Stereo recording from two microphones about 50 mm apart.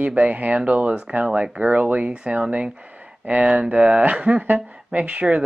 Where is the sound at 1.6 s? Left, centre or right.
Right.